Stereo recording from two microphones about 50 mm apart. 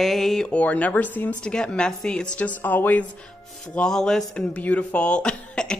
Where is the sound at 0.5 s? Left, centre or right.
Left.